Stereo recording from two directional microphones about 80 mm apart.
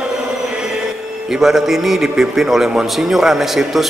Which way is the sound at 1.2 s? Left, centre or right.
Centre.